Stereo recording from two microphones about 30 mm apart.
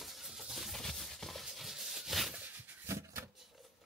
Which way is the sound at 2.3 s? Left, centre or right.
Right.